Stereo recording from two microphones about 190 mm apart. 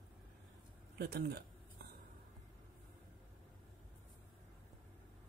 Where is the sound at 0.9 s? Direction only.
55° right (ahead or behind).